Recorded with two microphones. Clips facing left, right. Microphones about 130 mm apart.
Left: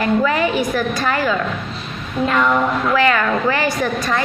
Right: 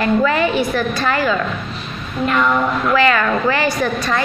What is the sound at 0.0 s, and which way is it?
A woman's voice, 10° left (ahead or behind).